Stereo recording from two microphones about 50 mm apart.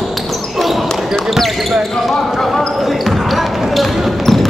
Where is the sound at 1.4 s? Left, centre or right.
Centre.